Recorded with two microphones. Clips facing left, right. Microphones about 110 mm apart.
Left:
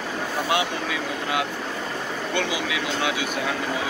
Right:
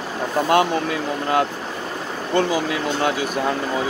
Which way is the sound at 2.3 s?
45° right (ahead or behind).